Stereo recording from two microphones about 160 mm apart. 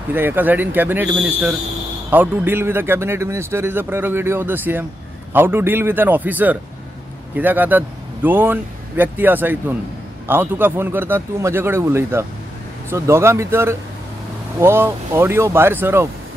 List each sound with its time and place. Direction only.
0.1 s a man's voice: 10° right (ahead or behind)